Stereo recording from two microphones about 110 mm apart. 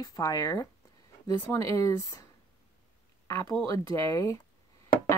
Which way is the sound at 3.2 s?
25° left (ahead or behind).